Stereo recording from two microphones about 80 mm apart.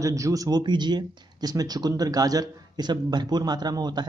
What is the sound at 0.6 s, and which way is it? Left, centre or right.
Speech, right.